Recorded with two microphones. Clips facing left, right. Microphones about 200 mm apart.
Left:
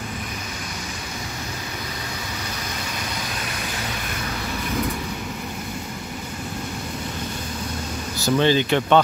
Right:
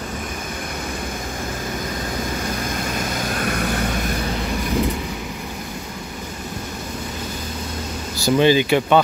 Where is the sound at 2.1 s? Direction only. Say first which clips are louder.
Right 7 dB; 50° right (ahead or behind).